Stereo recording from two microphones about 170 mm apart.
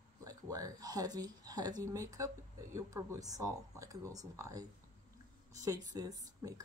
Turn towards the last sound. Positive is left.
turn(degrees=-20)  # may be behind; listen again after turning